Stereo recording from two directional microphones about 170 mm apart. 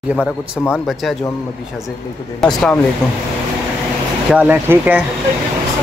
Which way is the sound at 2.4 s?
5° left (ahead or behind).